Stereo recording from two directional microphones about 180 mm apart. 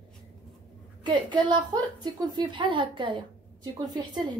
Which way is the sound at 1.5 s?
25° right (ahead or behind).